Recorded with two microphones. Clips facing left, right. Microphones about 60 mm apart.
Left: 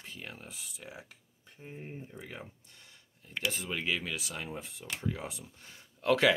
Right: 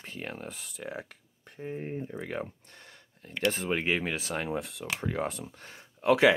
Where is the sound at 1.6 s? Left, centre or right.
Right.